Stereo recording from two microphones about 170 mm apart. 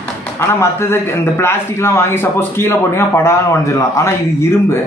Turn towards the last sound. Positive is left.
turn(degrees=15)  # may be behind; listen again after turning